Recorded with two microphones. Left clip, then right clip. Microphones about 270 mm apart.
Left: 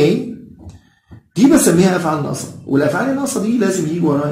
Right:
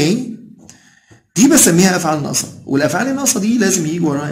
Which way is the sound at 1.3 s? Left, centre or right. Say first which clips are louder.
Even; right.